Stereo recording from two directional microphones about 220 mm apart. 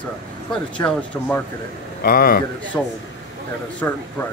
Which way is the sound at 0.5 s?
5° left (ahead or behind).